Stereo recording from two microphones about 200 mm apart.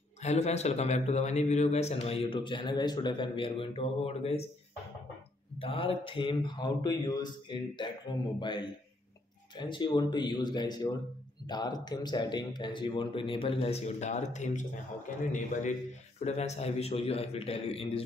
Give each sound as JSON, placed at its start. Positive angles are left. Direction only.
{"t": 0.2, "sound": "a man's voice", "side_deg": 35}
{"t": 5.6, "sound": "a man's voice", "side_deg": 25}